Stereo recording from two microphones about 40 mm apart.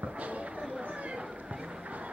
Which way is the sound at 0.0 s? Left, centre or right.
Right.